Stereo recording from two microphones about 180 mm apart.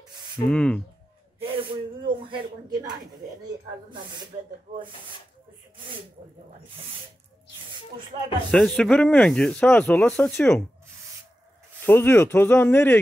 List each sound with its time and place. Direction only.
0.5 s speech: 5° left (ahead or behind)
1.4 s speech: 25° right (ahead or behind)
8.1 s speech: 35° right (ahead or behind)
8.5 s speech: 5° left (ahead or behind)
11.8 s speech: 10° left (ahead or behind)